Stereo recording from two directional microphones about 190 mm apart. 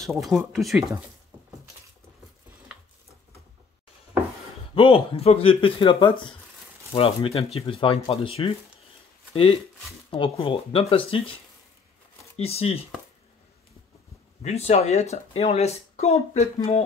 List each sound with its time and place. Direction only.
0.0 s speech: centre (ahead or behind)
4.7 s speech: 30° left (ahead or behind)
14.4 s speech: 35° left (ahead or behind)